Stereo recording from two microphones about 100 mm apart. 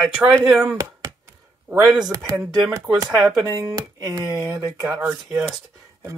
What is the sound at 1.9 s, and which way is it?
Speech, 40° right (ahead or behind).